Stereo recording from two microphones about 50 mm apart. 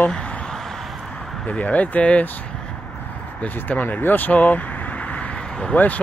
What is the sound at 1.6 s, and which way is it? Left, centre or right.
Speech, left.